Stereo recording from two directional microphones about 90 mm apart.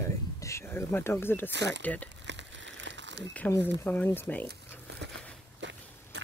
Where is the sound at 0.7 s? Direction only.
25° left (ahead or behind).